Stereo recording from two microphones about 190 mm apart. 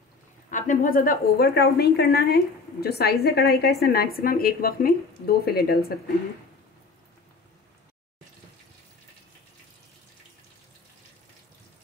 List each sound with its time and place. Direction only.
0.5 s a woman's voice: 45° left (ahead or behind)